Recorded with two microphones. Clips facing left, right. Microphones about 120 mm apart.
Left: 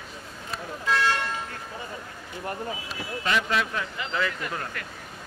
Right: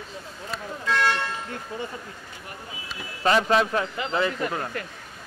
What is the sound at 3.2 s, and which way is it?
Speech, 35° right (ahead or behind).